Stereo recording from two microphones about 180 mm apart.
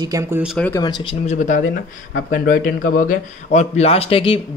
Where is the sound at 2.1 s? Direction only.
55° left (ahead or behind).